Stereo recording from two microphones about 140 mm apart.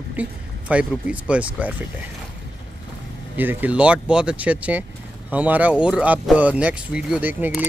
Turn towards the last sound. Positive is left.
turn(degrees=-15)  # may be behind; listen again after turning